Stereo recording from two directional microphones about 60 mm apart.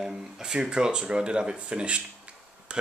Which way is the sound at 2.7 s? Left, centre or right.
Centre.